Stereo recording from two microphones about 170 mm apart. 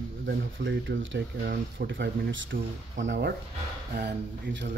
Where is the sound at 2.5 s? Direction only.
90° right.